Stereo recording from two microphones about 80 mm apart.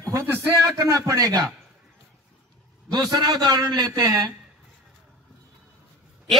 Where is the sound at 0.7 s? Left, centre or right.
Right.